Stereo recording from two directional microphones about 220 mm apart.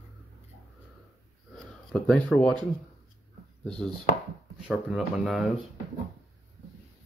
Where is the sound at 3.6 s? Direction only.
5° left (ahead or behind).